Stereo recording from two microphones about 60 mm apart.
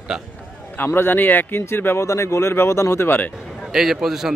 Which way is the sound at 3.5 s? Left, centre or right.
Centre.